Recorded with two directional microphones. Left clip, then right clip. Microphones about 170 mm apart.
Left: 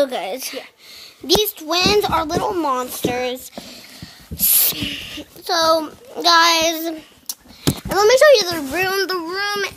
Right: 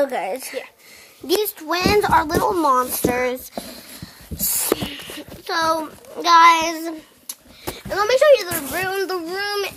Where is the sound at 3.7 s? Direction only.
5° left (ahead or behind).